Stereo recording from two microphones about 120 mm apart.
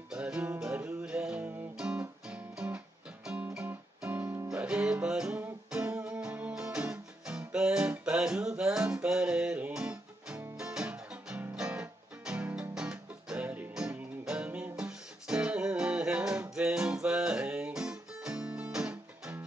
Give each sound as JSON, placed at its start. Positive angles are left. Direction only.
{"t": 0.1, "sound": "music", "side_deg": -10}
{"t": 3.5, "sound": "guitar", "side_deg": -10}
{"t": 4.5, "sound": "music", "side_deg": -5}